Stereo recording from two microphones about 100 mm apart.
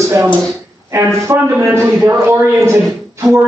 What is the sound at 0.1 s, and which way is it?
A man's voice, 20° right (ahead or behind).